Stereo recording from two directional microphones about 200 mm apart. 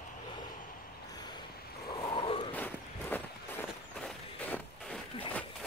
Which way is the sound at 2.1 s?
25° left (ahead or behind).